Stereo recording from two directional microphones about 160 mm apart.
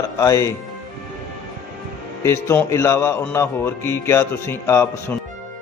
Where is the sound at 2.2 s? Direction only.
15° left (ahead or behind).